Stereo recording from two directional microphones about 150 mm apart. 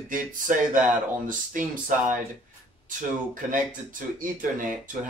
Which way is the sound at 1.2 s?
60° right (ahead or behind).